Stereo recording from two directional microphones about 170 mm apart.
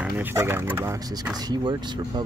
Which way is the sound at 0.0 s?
15° right (ahead or behind).